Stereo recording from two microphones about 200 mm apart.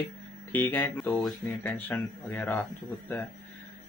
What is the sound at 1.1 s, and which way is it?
Speech, centre (ahead or behind).